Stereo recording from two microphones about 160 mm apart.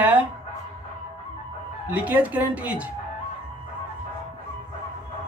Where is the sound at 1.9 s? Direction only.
10° right (ahead or behind).